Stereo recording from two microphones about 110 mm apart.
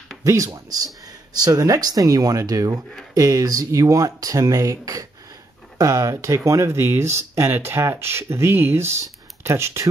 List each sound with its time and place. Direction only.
0.2 s speech: 30° right (ahead or behind)